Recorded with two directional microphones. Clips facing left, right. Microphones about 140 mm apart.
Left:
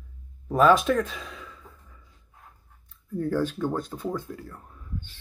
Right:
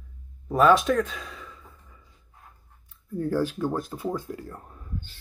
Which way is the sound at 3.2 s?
10° right (ahead or behind).